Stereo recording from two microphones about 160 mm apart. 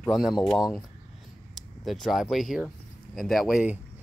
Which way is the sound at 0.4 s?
Centre (ahead or behind).